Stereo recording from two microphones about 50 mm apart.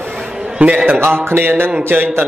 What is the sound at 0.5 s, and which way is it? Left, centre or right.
Speech, right.